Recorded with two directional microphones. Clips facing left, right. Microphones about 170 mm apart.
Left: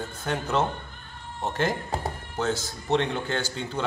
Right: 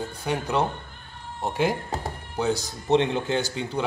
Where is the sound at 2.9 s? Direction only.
20° right (ahead or behind).